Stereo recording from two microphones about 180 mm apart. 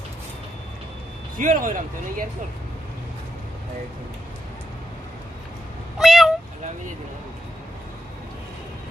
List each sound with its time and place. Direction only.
1.4 s speech: 45° right (ahead or behind)
5.9 s meow: centre (ahead or behind)